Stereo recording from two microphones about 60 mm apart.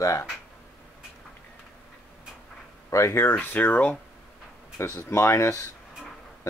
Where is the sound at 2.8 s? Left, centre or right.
Left.